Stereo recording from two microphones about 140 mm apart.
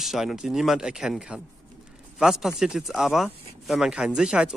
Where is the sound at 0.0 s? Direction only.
Centre (ahead or behind).